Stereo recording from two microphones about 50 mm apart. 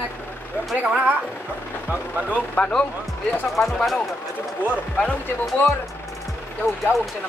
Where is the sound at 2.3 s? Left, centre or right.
Left.